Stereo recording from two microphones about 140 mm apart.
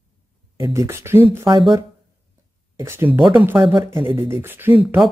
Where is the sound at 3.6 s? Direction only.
35° right (ahead or behind).